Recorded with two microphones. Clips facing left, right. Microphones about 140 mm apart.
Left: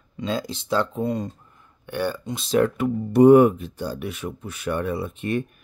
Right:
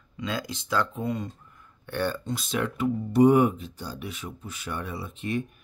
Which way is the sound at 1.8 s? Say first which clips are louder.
Left 2 dB; 10° left (ahead or behind).